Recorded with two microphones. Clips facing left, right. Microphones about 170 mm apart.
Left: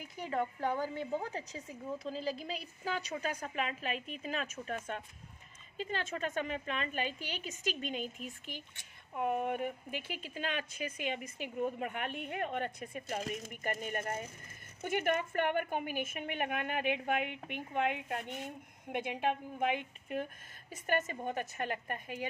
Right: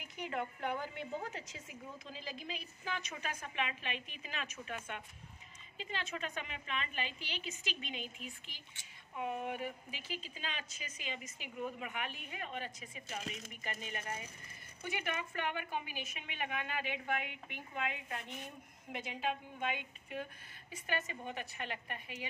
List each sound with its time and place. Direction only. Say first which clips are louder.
0.3 s a woman's voice: left 5 dB; 35° left (ahead or behind); by 11.5 s 55° left (ahead or behind)
11.5 s a woman's voice: left 5 dB; 45° left (ahead or behind)